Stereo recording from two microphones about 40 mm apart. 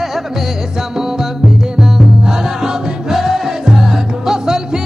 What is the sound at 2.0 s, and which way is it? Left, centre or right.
Music, centre.